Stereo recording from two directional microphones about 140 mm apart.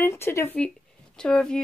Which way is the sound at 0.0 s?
20° left (ahead or behind).